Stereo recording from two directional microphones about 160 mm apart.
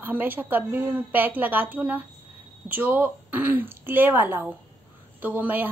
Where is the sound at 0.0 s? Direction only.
10° right (ahead or behind).